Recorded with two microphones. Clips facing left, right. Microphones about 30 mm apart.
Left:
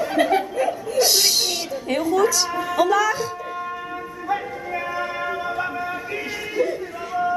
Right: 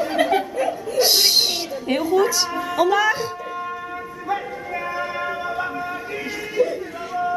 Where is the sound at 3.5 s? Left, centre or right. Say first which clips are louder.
Even; centre.